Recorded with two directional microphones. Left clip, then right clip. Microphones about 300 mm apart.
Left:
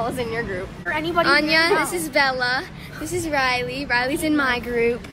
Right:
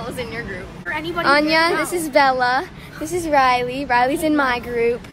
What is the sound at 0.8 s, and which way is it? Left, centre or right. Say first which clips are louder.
Speech: left 2 dB; centre.